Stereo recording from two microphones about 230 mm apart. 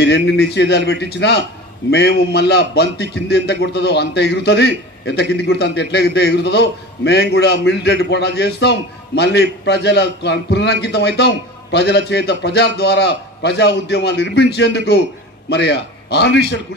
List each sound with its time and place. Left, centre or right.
0.0 s a man's voice: left